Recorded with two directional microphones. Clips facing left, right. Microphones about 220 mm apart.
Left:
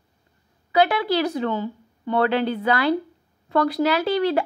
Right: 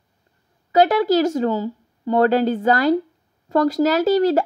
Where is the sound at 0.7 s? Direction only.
45° right (ahead or behind).